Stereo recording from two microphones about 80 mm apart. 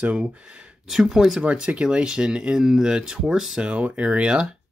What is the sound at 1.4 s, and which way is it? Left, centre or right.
Speech, centre.